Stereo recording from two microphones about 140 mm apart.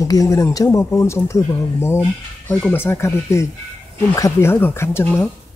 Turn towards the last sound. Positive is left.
turn(degrees=15)  # may be behind; listen again after turning